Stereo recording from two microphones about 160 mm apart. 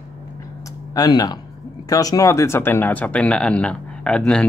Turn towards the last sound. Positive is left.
turn(degrees=5)  # may be behind; listen again after turning